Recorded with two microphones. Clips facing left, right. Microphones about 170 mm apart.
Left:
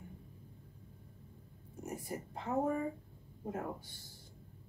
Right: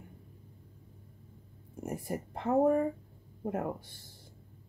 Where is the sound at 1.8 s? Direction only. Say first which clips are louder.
Right 5 dB; 60° right (ahead or behind).